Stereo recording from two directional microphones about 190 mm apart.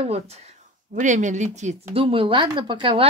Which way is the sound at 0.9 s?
40° right (ahead or behind).